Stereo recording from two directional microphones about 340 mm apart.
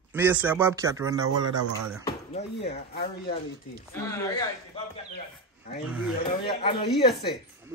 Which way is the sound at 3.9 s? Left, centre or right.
Centre.